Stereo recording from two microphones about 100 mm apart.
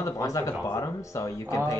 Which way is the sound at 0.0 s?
30° left (ahead or behind).